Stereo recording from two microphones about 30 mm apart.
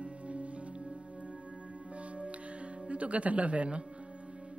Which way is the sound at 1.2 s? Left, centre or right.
Right.